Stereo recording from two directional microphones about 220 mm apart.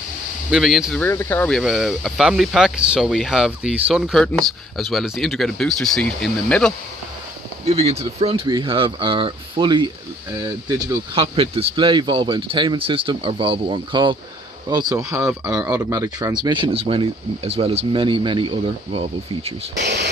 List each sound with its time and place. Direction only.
0.5 s speech: centre (ahead or behind)
1.0 s speech: 10° left (ahead or behind)
7.6 s speech: 30° right (ahead or behind)
11.1 s speech: 25° right (ahead or behind)
19.8 s speech: 50° right (ahead or behind)